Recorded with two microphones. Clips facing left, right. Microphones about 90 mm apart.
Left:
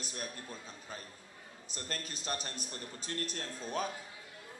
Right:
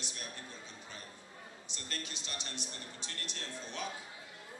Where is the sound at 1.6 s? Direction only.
40° left (ahead or behind).